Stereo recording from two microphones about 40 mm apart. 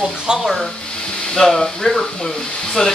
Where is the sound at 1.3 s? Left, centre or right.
Centre.